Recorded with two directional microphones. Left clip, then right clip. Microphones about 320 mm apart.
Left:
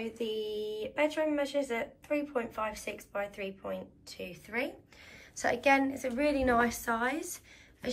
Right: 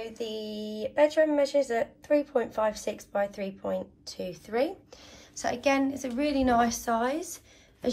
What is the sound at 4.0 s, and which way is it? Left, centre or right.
A woman's voice, centre.